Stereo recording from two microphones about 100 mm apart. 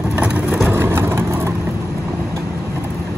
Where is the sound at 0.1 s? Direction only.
15° right (ahead or behind).